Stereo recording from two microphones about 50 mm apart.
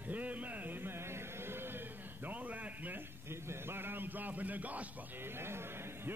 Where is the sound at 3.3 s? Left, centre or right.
Right.